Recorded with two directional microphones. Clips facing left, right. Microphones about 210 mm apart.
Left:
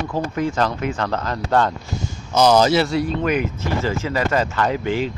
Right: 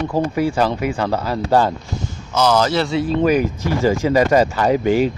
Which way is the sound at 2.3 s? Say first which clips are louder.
Left 2 dB; 15° left (ahead or behind).